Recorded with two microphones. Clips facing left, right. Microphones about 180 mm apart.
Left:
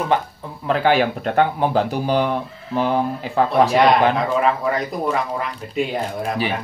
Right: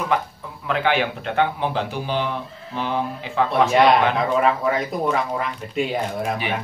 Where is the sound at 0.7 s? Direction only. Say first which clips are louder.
Left 4 dB; 35° left (ahead or behind).